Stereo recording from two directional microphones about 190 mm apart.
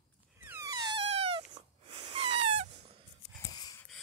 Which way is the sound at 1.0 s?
30° right (ahead or behind).